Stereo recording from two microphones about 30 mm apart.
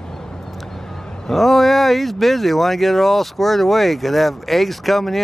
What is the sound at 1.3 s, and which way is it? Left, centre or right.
Speech, centre.